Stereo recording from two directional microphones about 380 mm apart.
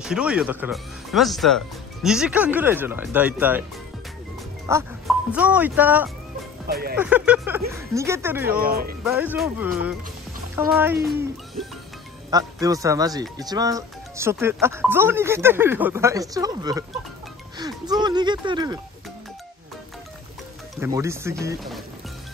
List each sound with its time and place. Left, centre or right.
0.0 s speech: centre
4.6 s speech: centre
6.7 s speech: right
7.0 s speech: centre
8.5 s speech: right
9.0 s speech: centre
10.7 s speech: centre
20.8 s speech: centre